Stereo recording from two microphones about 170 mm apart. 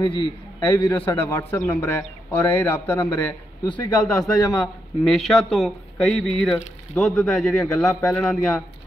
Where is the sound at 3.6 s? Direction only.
25° left (ahead or behind).